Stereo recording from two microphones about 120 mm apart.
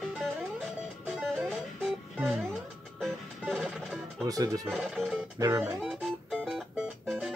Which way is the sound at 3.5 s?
Centre (ahead or behind).